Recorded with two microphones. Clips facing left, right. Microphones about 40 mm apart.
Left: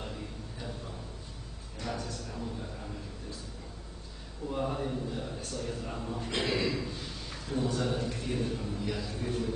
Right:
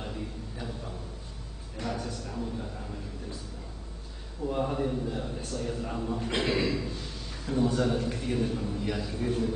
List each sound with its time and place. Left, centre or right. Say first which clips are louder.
0.0 s a sound: right 3 dB; centre
4.5 s a man's voice: right 4 dB; centre
6.4 s speech: right 2 dB; right
6.7 s a sound: right 3 dB; centre
7.8 s a man's voice: right 4 dB; centre
8.1 s a man's voice: right 4 dB; centre
8.8 s speech: right 1 dB; centre